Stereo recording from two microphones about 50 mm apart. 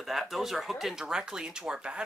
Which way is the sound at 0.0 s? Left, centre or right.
Centre.